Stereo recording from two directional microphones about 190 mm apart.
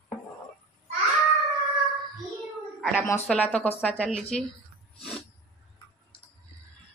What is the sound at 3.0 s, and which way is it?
Speech, 10° left (ahead or behind).